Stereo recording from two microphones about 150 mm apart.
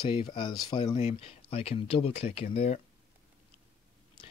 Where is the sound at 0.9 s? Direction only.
45° left (ahead or behind).